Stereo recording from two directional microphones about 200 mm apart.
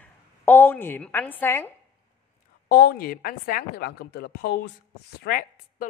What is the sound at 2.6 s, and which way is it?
A woman's voice, 50° left (ahead or behind).